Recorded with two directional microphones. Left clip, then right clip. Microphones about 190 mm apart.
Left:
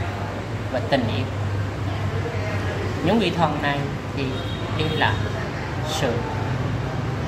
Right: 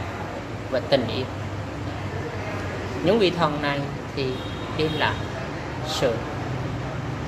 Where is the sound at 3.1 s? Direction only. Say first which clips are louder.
Right 1 dB; 35° right (ahead or behind).